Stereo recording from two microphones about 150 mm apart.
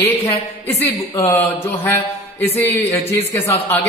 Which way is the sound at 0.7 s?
20° left (ahead or behind).